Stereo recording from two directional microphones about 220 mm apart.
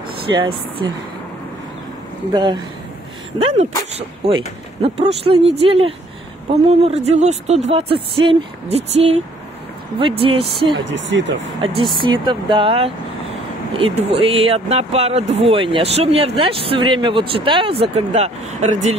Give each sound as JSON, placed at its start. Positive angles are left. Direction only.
{"t": 2.3, "sound": "speech", "side_deg": -20}
{"t": 4.8, "sound": "speech", "side_deg": -25}
{"t": 10.7, "sound": "speech", "side_deg": -55}
{"t": 11.3, "sound": "speech", "side_deg": -25}